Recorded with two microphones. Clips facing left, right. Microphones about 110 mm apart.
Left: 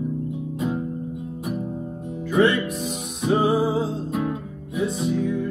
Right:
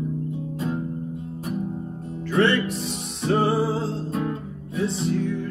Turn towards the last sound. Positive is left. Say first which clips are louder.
# left 2 dB
turn(degrees=5)  # may be behind; listen again after turning